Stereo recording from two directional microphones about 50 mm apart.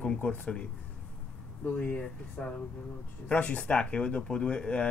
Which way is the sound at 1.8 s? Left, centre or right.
Left.